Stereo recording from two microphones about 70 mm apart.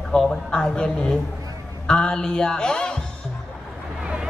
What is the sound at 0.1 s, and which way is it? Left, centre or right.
A man's voice, centre.